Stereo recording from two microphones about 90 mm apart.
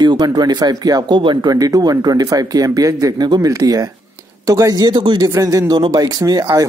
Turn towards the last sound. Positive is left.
turn(degrees=-40)  # may be behind; listen again after turning